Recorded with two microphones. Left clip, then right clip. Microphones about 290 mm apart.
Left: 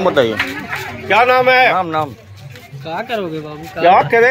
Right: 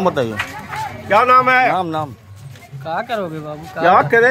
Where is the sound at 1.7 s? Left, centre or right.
Right.